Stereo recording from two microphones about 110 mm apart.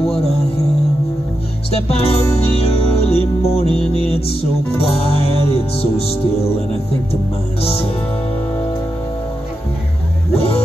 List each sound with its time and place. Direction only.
0.0 s music: 60° left (ahead or behind)
1.7 s music: 65° left (ahead or behind)
10.3 s music: 60° left (ahead or behind)